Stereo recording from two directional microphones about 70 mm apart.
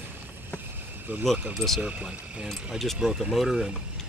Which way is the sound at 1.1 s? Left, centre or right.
Right.